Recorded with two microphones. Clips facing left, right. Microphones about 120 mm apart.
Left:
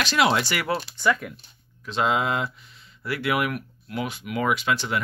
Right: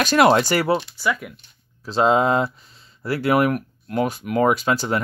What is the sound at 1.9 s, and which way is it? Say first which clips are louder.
Speech: right 6 dB; 35° right (ahead or behind).